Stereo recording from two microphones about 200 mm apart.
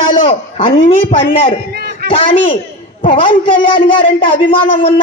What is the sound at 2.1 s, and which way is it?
A man's voice, 25° left (ahead or behind).